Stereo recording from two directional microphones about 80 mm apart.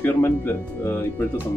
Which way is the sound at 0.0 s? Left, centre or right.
Left.